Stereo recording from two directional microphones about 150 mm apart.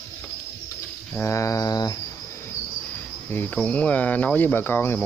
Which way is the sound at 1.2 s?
20° left (ahead or behind).